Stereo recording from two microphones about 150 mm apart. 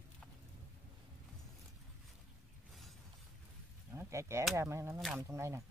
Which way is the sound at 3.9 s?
20° right (ahead or behind).